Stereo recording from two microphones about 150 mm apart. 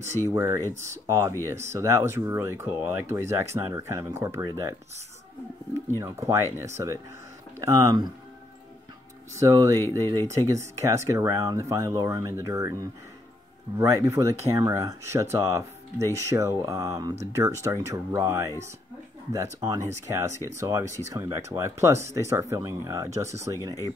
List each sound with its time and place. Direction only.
0.3 s speech: 20° right (ahead or behind)
5.9 s speech: 20° right (ahead or behind)
9.3 s speech: 20° right (ahead or behind)
9.8 s speech: 20° left (ahead or behind)
10.5 s speech: 20° right (ahead or behind)